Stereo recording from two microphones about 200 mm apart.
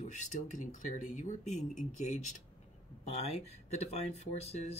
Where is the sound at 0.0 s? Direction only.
40° left (ahead or behind).